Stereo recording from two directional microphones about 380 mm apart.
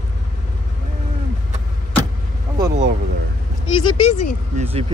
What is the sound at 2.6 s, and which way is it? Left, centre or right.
Vehicle, right.